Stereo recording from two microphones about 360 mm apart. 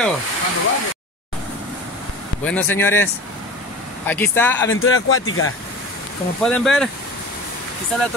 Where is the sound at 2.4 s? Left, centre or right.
Centre.